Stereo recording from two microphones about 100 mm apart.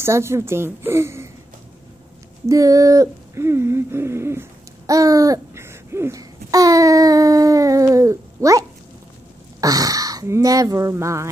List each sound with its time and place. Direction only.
0.0 s a woman's voice: 25° right (ahead or behind)
2.4 s a sound: 35° right (ahead or behind)
9.6 s speech: 35° right (ahead or behind)